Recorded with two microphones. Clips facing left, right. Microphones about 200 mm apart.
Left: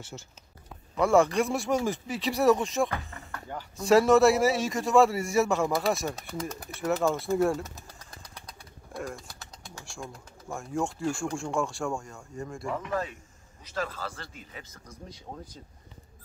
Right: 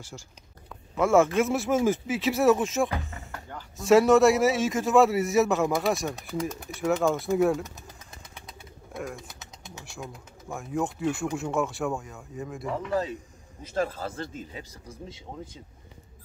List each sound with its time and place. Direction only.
0.1 s a man's voice: 5° left (ahead or behind)
7.6 s speech: 20° right (ahead or behind)
8.9 s a man's voice: centre (ahead or behind)
14.0 s speech: 20° right (ahead or behind)
15.0 s speech: 25° right (ahead or behind)